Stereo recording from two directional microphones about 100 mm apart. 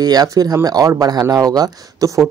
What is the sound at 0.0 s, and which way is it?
Speech, 40° right (ahead or behind).